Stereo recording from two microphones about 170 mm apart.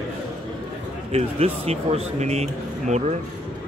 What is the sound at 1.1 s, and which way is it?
Speech, 40° right (ahead or behind).